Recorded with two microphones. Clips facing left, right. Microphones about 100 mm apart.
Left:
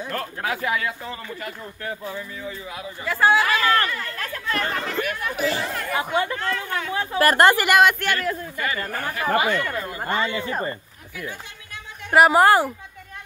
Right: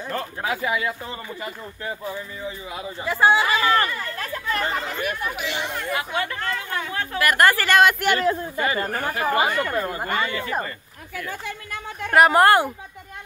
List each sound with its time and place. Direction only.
0.1 s speech: 15° right (ahead or behind)
5.3 s speech: 40° left (ahead or behind)
5.6 s speech: centre (ahead or behind)
5.9 s speech: 20° left (ahead or behind)
6.3 s speech: 5° right (ahead or behind)
6.9 s a woman's voice: 15° left (ahead or behind)
7.2 s speech: 30° left (ahead or behind)
8.0 s speech: 20° right (ahead or behind)
10.2 s speech: 20° left (ahead or behind)
12.1 s speech: 5° left (ahead or behind)